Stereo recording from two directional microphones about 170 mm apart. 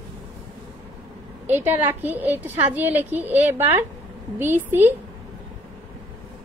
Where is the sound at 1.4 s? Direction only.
10° right (ahead or behind).